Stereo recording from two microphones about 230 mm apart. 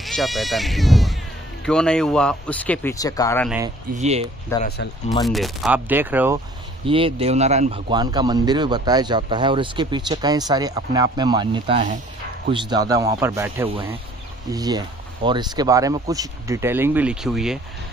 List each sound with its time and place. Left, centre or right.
0.0 s speech: centre
3.9 s speech: right
4.5 s speech: centre
5.2 s speech: centre
6.9 s speech: right
12.5 s speech: centre